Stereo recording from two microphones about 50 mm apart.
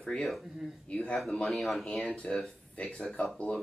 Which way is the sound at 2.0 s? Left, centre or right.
Centre.